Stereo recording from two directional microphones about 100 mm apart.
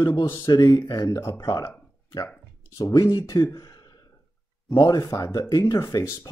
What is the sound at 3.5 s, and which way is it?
Gasp, 40° left (ahead or behind).